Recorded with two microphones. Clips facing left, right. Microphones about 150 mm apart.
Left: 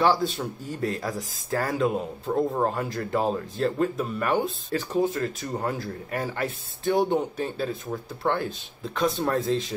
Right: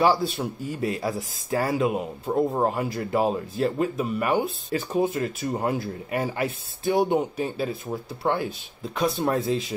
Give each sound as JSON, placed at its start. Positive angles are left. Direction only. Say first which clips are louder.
{"t": 0.0, "sound": "speech", "louder": "right 1 dB", "side_deg": -10}